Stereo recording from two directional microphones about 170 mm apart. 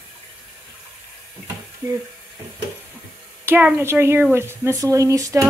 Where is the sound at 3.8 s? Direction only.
15° right (ahead or behind).